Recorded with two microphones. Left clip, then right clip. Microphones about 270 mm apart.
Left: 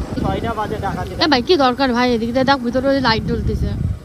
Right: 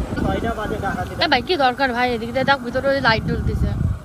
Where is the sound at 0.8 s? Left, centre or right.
Centre.